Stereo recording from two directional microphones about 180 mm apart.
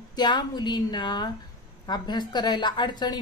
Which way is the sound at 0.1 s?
25° left (ahead or behind).